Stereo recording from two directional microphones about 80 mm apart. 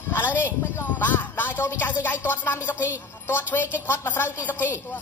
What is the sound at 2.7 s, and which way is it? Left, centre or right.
Speech, centre.